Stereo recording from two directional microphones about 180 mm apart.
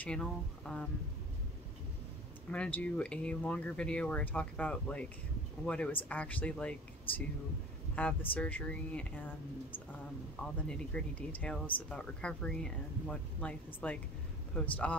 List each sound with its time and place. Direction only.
0.0 s speech: 5° left (ahead or behind)
2.5 s speech: 5° left (ahead or behind)
10.7 s speech: 5° left (ahead or behind)